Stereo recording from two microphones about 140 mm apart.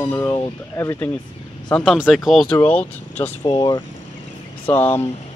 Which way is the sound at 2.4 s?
10° left (ahead or behind).